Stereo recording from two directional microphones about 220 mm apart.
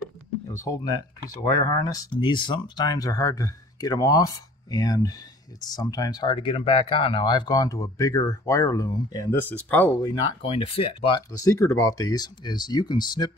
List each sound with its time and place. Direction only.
0.5 s speech: 15° left (ahead or behind)
10.1 s speech: 20° left (ahead or behind)